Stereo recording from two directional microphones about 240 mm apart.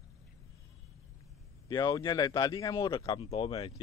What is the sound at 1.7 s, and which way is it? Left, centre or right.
Speech, centre.